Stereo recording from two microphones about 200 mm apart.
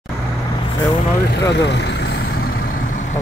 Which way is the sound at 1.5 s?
60° left (ahead or behind).